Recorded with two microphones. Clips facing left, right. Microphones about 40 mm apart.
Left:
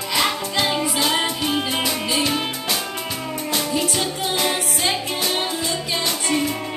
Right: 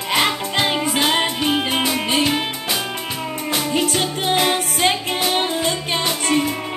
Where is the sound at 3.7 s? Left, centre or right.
Right.